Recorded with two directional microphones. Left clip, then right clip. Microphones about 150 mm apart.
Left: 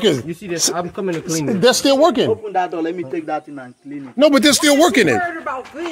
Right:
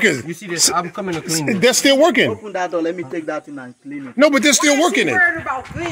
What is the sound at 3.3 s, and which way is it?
Speech, 90° right.